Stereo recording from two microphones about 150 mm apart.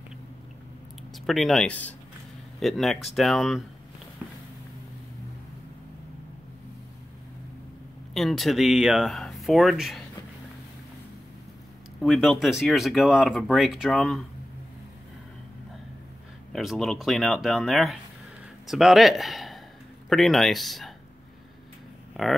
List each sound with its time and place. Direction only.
1.1 s speech: centre (ahead or behind)
8.1 s speech: centre (ahead or behind)
12.0 s speech: centre (ahead or behind)
16.5 s speech: centre (ahead or behind)